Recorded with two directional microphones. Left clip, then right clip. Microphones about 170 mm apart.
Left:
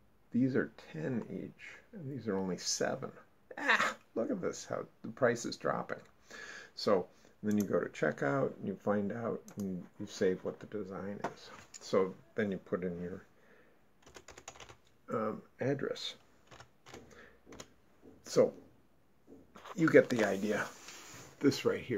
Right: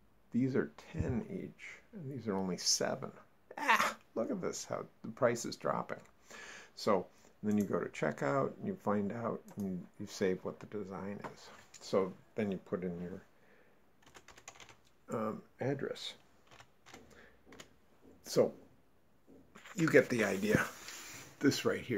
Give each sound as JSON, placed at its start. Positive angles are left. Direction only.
{"t": 0.3, "sound": "speech", "side_deg": -30}
{"t": 15.0, "sound": "speech", "side_deg": -25}
{"t": 16.4, "sound": "typewriter", "side_deg": 20}
{"t": 18.4, "sound": "speech", "side_deg": -30}
{"t": 19.8, "sound": "speech", "side_deg": -25}
{"t": 21.4, "sound": "speech", "side_deg": -15}